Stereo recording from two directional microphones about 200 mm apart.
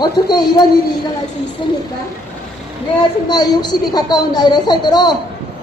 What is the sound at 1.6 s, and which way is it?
Speech, 25° left (ahead or behind).